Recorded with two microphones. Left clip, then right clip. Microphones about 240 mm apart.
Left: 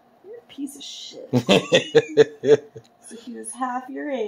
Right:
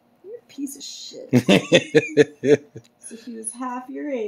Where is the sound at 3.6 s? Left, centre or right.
Centre.